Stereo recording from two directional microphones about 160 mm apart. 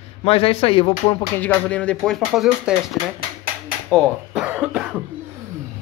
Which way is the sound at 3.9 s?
Centre (ahead or behind).